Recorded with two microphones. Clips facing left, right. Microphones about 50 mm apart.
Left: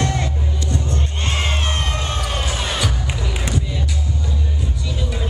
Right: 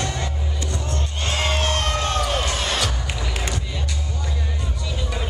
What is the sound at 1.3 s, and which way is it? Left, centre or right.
Music, left.